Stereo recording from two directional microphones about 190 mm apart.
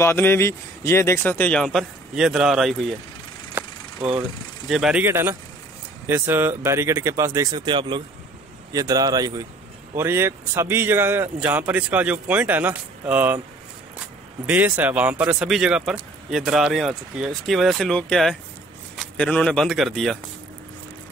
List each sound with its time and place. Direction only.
0.0 s speech: 10° left (ahead or behind)
3.6 s vehicle: 10° right (ahead or behind)
4.0 s a man's voice: 5° right (ahead or behind)
14.4 s speech: 10° right (ahead or behind)